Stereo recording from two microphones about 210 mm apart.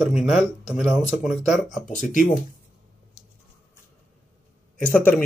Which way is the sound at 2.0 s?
35° left (ahead or behind).